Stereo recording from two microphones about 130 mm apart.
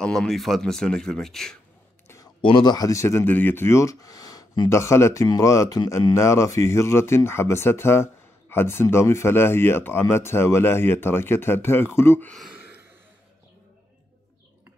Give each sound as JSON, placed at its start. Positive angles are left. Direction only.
{"t": 0.0, "sound": "speech", "side_deg": 5}
{"t": 2.4, "sound": "speech", "side_deg": 35}